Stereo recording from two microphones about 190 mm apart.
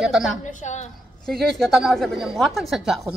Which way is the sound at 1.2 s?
Centre (ahead or behind).